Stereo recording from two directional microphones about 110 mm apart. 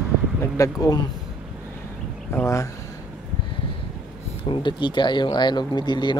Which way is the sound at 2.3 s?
25° left (ahead or behind).